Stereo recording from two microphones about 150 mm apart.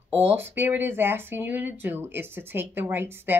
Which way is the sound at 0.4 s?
15° right (ahead or behind).